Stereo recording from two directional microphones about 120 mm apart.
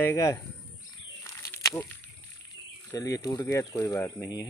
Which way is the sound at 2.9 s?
30° left (ahead or behind).